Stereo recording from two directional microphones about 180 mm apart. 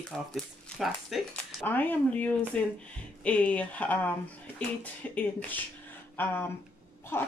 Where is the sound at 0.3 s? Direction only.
Centre (ahead or behind).